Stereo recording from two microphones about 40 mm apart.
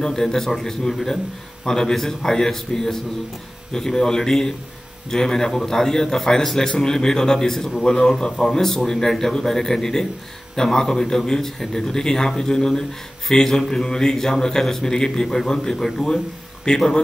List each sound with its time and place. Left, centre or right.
0.0 s speech: centre